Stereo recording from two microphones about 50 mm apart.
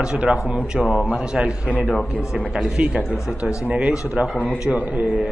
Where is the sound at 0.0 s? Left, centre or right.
Centre.